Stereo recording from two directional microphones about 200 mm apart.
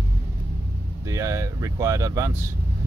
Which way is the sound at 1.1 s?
15° right (ahead or behind).